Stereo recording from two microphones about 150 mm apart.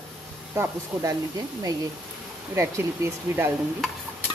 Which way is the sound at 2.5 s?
20° right (ahead or behind).